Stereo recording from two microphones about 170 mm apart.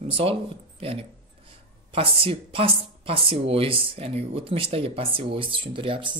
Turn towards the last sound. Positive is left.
turn(degrees=-30)  # may be behind; listen again after turning